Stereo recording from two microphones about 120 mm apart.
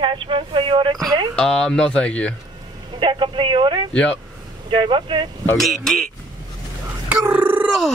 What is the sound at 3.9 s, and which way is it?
Speech, 10° left (ahead or behind).